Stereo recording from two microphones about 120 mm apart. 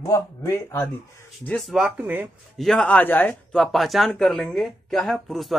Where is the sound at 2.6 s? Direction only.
5° left (ahead or behind).